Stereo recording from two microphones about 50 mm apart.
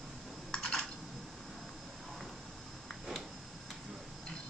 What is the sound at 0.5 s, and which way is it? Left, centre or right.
Computer keyboard, centre.